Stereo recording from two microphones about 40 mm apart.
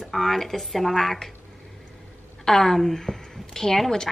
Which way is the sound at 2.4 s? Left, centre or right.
Centre.